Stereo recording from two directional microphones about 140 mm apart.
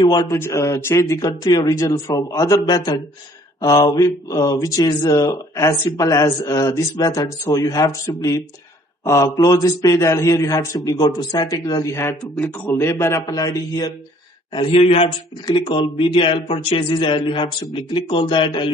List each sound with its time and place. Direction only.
0.0 s a man's voice: 25° left (ahead or behind)
14.5 s a man's voice: 40° left (ahead or behind)